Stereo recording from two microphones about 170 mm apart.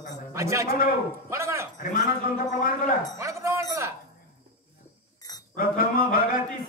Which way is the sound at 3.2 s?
15° right (ahead or behind).